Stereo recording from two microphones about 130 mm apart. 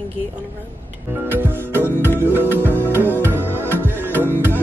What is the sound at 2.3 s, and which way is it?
Speech, 15° right (ahead or behind).